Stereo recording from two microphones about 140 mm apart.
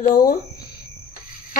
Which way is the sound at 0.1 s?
80° left.